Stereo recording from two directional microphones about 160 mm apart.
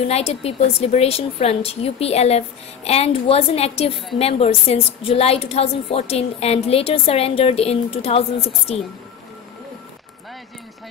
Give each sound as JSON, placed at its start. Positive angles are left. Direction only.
{"t": 0.1, "sound": "a woman's voice", "side_deg": 40}